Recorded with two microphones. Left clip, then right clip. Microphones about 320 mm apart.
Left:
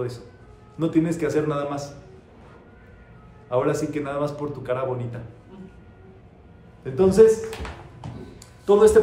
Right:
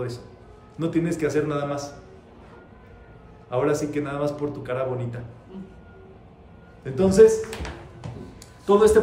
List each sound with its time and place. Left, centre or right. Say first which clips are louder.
0.7 s a man's voice: left 2 dB; centre
3.4 s a man's voice: left 1 dB; centre
6.8 s a man's voice: even; centre
8.6 s speech: left 2 dB; centre